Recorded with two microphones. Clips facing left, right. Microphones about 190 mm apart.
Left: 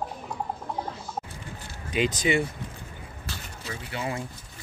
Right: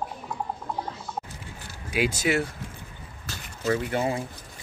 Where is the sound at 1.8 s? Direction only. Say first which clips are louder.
Even; 10° right (ahead or behind).